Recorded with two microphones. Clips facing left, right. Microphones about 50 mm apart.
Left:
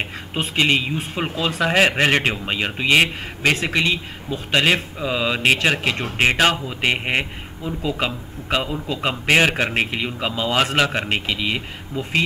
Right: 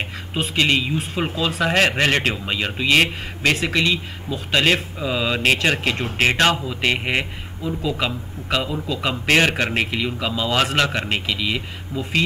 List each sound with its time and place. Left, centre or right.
0.0 s a man's voice: centre
4.5 s a man's voice: centre
8.8 s a man's voice: left
9.2 s a man's voice: centre
9.8 s a man's voice: centre
10.5 s a man's voice: centre